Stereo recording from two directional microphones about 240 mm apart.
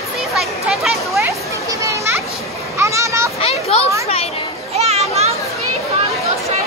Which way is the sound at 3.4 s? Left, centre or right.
Left.